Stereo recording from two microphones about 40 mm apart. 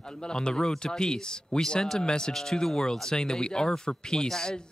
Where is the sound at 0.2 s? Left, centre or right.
Left.